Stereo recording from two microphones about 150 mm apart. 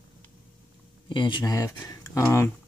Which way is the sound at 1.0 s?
30° left (ahead or behind).